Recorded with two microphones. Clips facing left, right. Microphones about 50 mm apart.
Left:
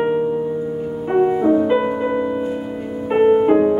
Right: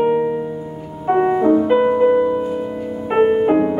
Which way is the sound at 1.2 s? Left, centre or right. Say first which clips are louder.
Even; right.